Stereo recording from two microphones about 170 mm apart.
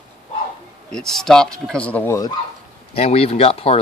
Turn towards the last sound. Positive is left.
turn(degrees=35)  # may be behind; listen again after turning